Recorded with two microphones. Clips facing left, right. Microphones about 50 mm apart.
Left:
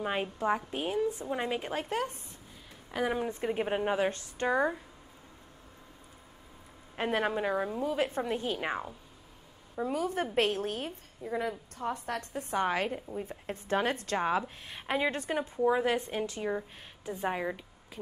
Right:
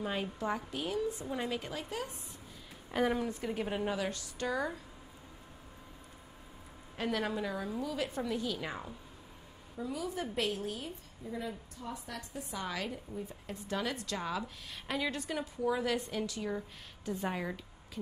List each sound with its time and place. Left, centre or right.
0.0 s a woman's voice: left
3.2 s speech: left
7.0 s a woman's voice: left